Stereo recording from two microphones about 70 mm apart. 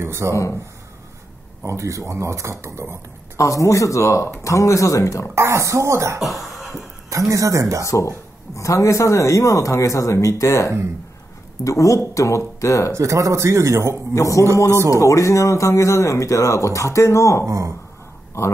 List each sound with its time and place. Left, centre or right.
0.0 s speech: right
0.3 s speech: left
1.6 s speech: right
3.3 s speech: left
5.3 s speech: right
6.1 s speech: centre
7.1 s speech: right
7.9 s speech: left
12.9 s speech: right
14.1 s speech: left
17.5 s speech: right